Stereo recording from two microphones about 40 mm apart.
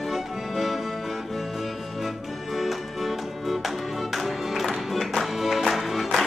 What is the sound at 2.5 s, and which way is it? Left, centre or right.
Music, centre.